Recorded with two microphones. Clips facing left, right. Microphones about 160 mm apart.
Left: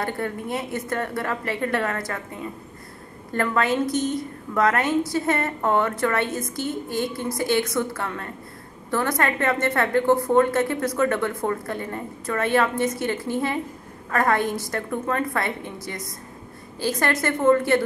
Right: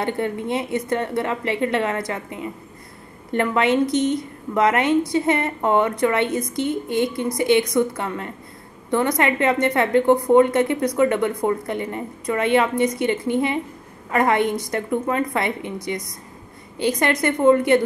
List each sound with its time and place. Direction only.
0.0 s a woman's voice: 20° right (ahead or behind)